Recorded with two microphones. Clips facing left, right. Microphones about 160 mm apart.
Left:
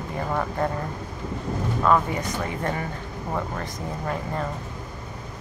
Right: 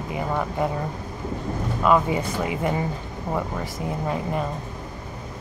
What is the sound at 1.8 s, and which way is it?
Speech, 15° right (ahead or behind).